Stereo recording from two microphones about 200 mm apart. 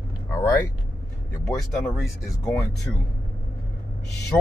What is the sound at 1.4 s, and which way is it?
Speech, 5° left (ahead or behind).